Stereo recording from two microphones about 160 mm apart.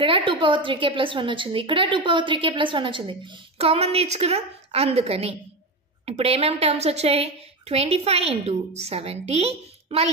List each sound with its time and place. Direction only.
0.0 s a woman's voice: 35° right (ahead or behind)